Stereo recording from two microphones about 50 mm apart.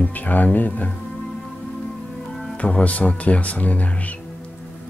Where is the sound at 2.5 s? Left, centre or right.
Left.